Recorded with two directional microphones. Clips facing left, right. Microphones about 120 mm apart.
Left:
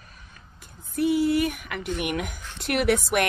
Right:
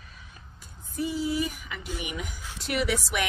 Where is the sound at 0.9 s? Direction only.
65° left (ahead or behind).